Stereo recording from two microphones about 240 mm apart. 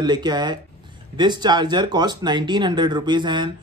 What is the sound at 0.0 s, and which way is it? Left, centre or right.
Speech, centre.